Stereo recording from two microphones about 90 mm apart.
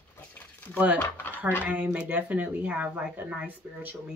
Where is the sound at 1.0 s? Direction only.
25° left (ahead or behind).